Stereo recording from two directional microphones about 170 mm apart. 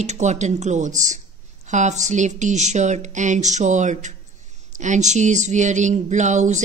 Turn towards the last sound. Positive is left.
turn(degrees=-45)  # may be behind; listen again after turning